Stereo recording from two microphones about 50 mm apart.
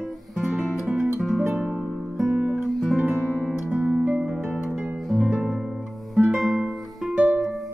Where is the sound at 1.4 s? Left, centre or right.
Centre.